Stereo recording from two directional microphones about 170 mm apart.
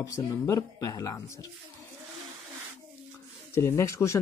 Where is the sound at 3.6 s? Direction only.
15° left (ahead or behind).